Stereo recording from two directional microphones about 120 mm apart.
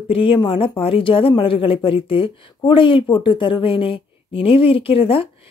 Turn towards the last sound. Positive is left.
turn(degrees=50)  # may be behind; listen again after turning